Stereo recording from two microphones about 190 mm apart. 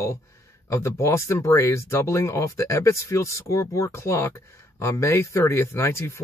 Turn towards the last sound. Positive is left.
turn(degrees=15)  # may be behind; listen again after turning